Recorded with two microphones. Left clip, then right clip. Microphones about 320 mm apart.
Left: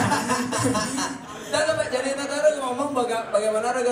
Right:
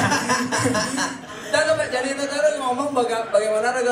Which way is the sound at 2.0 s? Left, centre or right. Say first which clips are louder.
Left 1 dB; centre.